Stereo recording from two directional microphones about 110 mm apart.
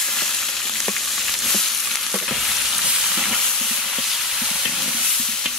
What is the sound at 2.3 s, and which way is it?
Stir, centre (ahead or behind).